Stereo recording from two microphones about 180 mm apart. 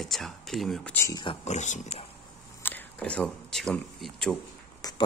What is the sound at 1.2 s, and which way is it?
Speech, 35° left (ahead or behind).